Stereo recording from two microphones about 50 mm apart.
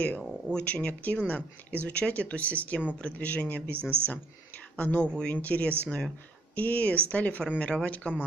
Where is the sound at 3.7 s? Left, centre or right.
Right.